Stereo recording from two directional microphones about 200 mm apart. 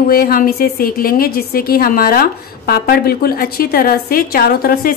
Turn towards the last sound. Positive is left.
turn(degrees=50)  # may be behind; listen again after turning